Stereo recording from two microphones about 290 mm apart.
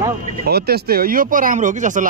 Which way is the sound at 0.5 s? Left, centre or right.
Right.